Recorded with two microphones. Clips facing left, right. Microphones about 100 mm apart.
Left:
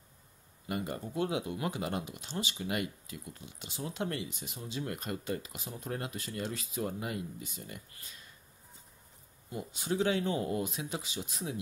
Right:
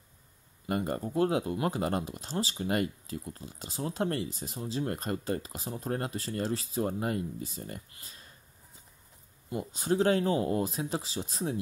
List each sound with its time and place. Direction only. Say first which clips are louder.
0.7 s speech: right 5 dB; 40° right (ahead or behind)
9.5 s speech: right 5 dB; 35° right (ahead or behind)